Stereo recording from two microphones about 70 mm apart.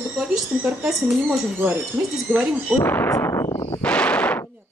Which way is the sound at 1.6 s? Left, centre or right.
Right.